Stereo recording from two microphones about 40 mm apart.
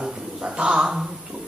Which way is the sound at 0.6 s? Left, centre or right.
Right.